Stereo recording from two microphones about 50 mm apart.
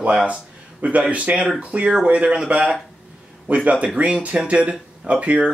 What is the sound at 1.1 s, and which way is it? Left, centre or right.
Speech, right.